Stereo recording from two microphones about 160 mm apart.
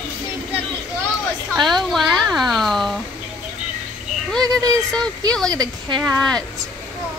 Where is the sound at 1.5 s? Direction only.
Centre (ahead or behind).